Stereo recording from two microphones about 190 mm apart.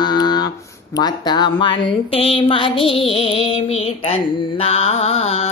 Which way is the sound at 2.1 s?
30° left (ahead or behind).